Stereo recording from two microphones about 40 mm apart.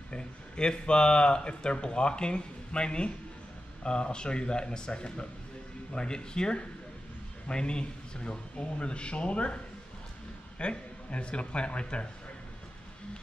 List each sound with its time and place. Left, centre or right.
0.1 s speech: left
10.6 s speech: left